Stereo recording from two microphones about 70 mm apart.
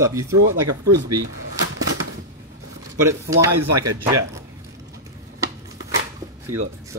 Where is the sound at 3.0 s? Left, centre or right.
Right.